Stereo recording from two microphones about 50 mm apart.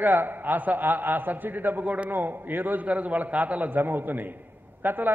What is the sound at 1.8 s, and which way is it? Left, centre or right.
Speech, right.